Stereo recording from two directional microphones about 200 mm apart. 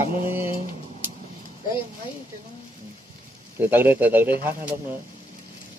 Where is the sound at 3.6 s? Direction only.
10° right (ahead or behind).